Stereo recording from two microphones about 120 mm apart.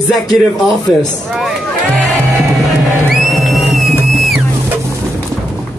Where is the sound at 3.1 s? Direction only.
Centre (ahead or behind).